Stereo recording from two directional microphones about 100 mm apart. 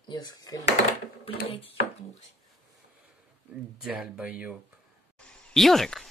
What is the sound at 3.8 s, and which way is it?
Speech, 10° right (ahead or behind).